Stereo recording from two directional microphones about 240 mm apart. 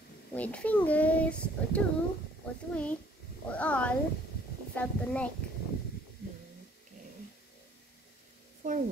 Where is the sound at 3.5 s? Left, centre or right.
Centre.